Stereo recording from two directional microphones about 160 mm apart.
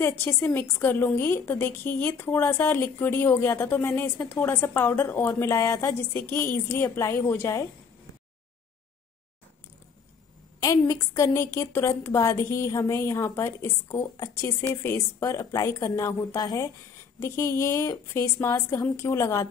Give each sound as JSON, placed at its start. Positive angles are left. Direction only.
{"t": 0.0, "sound": "a woman's voice", "side_deg": 15}
{"t": 10.6, "sound": "a woman's voice", "side_deg": 20}